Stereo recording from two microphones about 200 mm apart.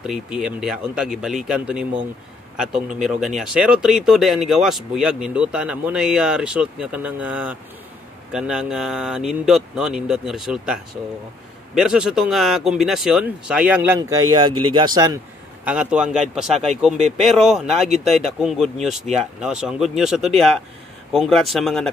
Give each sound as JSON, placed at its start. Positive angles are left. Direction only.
{"t": 0.0, "sound": "speech", "side_deg": -5}
{"t": 15.6, "sound": "speech", "side_deg": -5}